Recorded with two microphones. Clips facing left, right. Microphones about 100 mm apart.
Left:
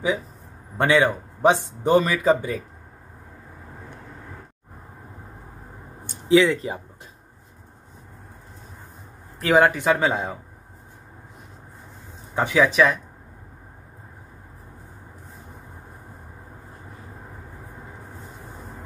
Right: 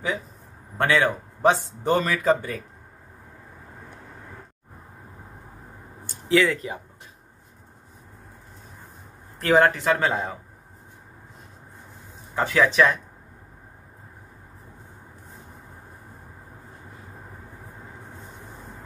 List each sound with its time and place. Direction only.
0.7 s speech: 15° left (ahead or behind)
6.2 s speech: 20° left (ahead or behind)
9.4 s speech: 5° left (ahead or behind)
12.4 s speech: 10° left (ahead or behind)